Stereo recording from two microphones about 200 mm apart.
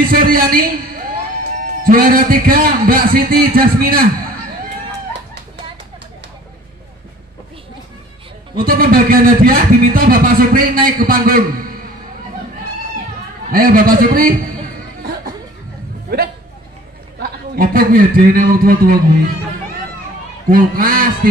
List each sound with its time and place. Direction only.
0.1 s speech: 45° right (ahead or behind)
8.6 s speech: 45° right (ahead or behind)
13.5 s speech: 45° right (ahead or behind)
16.1 s a man's voice: 55° right (ahead or behind)
20.4 s speech: 45° right (ahead or behind)